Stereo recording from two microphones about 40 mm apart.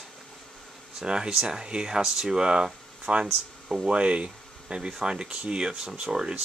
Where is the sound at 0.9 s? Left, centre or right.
Centre.